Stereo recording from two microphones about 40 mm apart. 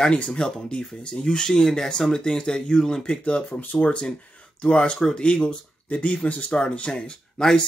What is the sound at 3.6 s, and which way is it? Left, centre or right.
Speech, left.